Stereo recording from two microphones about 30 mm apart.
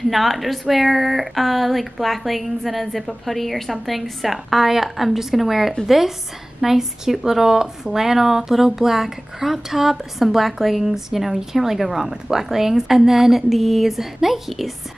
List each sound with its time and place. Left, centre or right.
0.1 s speech: centre